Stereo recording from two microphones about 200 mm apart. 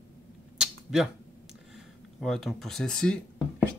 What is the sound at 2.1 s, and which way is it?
Speech, centre (ahead or behind).